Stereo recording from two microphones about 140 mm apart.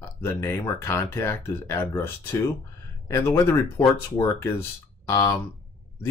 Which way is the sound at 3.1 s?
15° left (ahead or behind).